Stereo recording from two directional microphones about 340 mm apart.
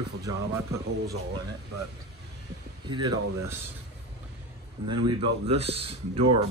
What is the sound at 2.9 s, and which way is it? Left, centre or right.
Speech, centre.